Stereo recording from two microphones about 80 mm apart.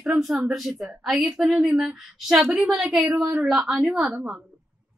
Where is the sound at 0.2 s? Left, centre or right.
Centre.